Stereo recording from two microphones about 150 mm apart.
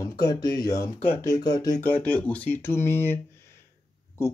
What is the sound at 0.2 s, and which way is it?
Speech, 25° left (ahead or behind).